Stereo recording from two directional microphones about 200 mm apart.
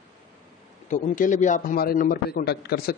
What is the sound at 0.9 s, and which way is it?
A man's voice, 40° left (ahead or behind).